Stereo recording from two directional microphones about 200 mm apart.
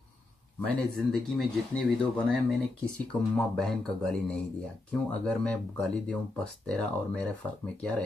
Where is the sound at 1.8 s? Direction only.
Centre (ahead or behind).